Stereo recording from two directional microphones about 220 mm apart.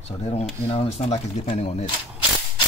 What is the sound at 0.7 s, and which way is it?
Speech, 25° left (ahead or behind).